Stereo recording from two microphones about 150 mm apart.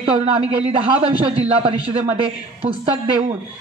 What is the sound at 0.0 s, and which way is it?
A man's voice, 40° right (ahead or behind).